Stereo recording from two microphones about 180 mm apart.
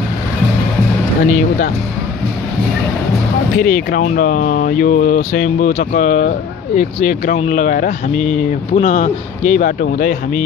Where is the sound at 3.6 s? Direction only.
55° left (ahead or behind).